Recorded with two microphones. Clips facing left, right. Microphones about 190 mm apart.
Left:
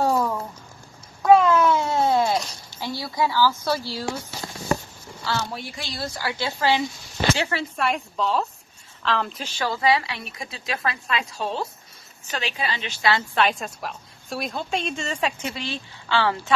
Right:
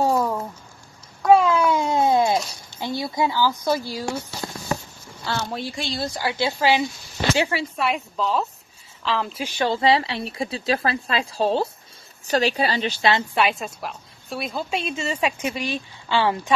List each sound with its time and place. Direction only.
0.0 s a sound: 15° right (ahead or behind)
1.2 s a sound: 5° right (ahead or behind)
2.7 s speech: 20° right (ahead or behind)
5.6 s a woman's voice: 30° right (ahead or behind)
7.7 s a woman's voice: centre (ahead or behind)
9.6 s speech: 25° right (ahead or behind)
13.4 s a woman's voice: 5° right (ahead or behind)